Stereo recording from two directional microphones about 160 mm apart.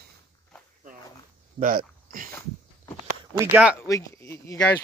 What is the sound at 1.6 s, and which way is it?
Speech, 60° right (ahead or behind).